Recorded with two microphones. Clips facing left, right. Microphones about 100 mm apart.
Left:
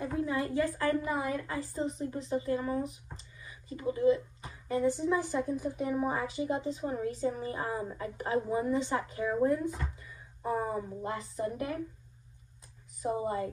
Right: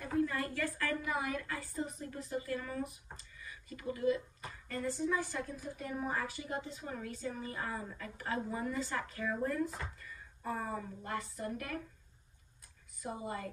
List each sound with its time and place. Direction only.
0.0 s a woman's voice: 20° left (ahead or behind)
13.0 s a woman's voice: 25° left (ahead or behind)